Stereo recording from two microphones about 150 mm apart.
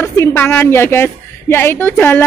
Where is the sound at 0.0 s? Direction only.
15° left (ahead or behind).